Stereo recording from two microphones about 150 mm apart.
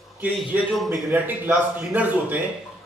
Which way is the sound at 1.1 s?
10° right (ahead or behind).